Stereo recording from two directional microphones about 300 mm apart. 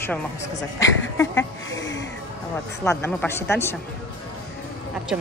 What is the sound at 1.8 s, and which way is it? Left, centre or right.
Music, left.